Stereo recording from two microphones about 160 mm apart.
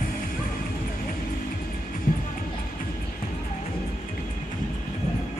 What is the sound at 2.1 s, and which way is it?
Music, 60° left (ahead or behind).